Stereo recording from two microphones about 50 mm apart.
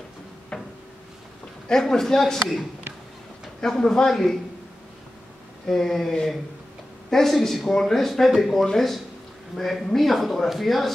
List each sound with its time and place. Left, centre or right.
0.5 s cupboard open or close: centre
1.7 s a man's voice: centre
3.6 s a man's voice: centre
5.7 s a man's voice: centre